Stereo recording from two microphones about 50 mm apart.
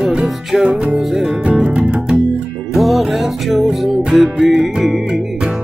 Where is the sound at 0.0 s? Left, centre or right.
Centre.